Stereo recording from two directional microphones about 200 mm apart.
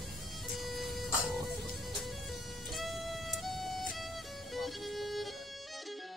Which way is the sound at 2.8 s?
Centre (ahead or behind).